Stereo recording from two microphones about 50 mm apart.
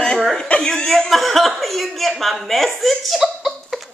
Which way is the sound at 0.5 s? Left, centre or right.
Centre.